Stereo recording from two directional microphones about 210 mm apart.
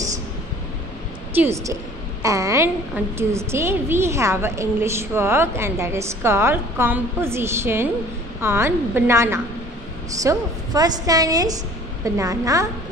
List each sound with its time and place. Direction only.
1.3 s a woman's voice: 10° right (ahead or behind)